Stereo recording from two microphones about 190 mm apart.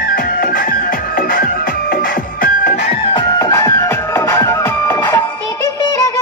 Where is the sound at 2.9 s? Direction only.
25° left (ahead or behind).